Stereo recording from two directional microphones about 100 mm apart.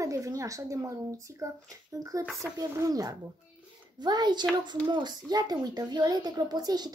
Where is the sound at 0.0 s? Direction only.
30° right (ahead or behind).